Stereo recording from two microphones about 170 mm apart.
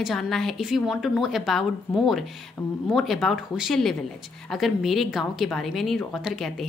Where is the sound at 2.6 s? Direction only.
25° left (ahead or behind).